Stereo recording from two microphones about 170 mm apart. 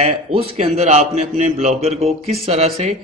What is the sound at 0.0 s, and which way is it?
A man's voice, 35° right (ahead or behind).